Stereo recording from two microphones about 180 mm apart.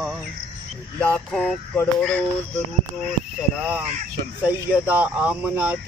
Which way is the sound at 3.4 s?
5° right (ahead or behind).